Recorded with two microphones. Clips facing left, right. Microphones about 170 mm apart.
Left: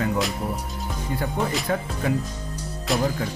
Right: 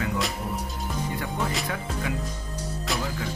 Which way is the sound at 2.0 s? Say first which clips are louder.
Left 8 dB; 40° left (ahead or behind).